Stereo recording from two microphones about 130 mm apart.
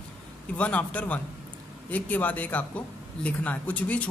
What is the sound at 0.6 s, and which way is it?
Speech, 10° left (ahead or behind).